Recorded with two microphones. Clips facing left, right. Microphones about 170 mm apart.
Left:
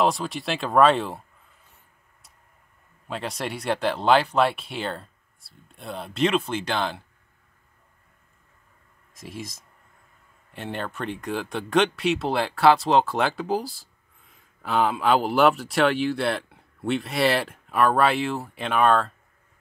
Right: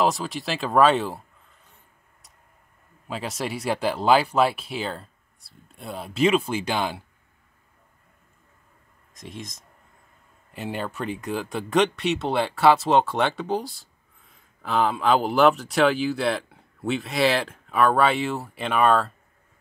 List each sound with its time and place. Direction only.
0.0 s speech: centre (ahead or behind)
3.1 s speech: 5° right (ahead or behind)
9.1 s speech: 5° left (ahead or behind)